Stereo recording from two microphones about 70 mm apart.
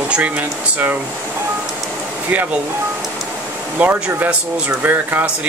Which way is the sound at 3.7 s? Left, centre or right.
Right.